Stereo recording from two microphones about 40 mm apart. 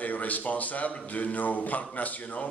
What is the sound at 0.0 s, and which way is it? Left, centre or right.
A man's voice, left.